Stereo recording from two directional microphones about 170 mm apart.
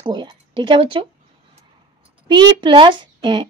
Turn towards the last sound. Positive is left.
turn(degrees=-25)  # may be behind; listen again after turning